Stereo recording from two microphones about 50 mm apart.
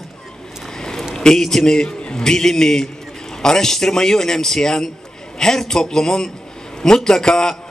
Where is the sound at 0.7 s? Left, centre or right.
Centre.